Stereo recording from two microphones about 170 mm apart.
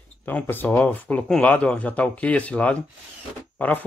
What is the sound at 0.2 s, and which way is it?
Speech, 10° left (ahead or behind).